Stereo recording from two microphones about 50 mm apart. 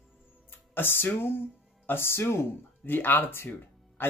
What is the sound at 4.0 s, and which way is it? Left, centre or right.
Music, left.